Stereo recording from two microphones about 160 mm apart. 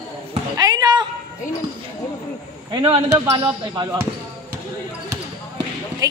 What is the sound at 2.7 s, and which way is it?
Speech, 25° right (ahead or behind).